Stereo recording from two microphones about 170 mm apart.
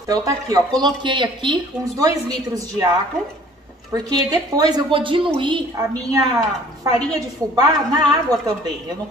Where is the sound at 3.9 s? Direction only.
25° right (ahead or behind).